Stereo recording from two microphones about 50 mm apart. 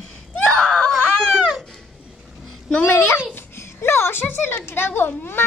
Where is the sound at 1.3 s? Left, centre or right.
Centre.